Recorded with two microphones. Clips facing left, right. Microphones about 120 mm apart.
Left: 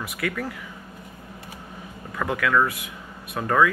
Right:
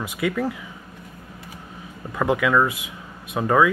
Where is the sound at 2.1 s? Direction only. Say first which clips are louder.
Right 3 dB; 20° right (ahead or behind).